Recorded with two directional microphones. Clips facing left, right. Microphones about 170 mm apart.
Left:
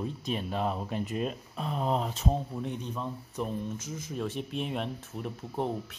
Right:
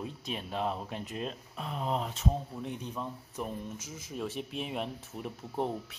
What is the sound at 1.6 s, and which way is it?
Speech, 40° left (ahead or behind).